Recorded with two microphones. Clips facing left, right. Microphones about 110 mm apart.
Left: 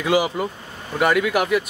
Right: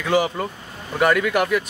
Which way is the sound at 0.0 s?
10° left (ahead or behind).